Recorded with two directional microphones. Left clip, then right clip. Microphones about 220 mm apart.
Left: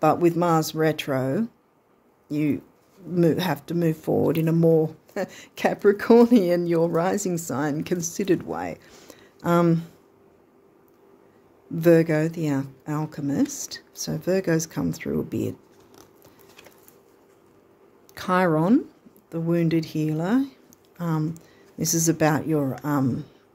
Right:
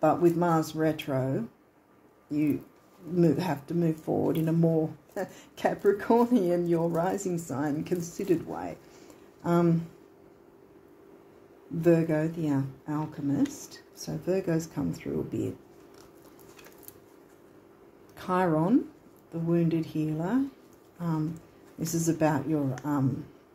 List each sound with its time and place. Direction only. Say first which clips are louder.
0.0 s speech: left 4 dB; 45° left (ahead or behind)
11.8 s speech: left 6 dB; 45° left (ahead or behind)
18.1 s speech: left 5 dB; 45° left (ahead or behind)